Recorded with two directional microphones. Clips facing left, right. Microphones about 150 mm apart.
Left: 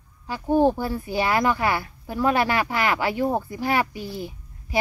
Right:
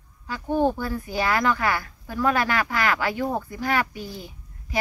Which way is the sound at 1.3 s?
20° left (ahead or behind).